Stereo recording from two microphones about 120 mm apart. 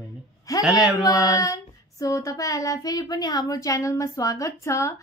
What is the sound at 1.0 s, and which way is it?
Child singing, 30° left (ahead or behind).